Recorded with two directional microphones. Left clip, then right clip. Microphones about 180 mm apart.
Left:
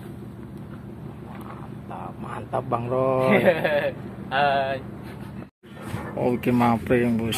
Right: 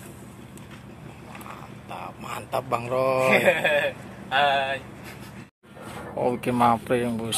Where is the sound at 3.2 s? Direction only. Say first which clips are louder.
Even; centre (ahead or behind).